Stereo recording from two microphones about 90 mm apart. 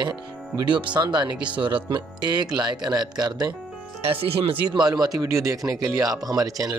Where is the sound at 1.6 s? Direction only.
65° right (ahead or behind); by 3.5 s 50° right (ahead or behind).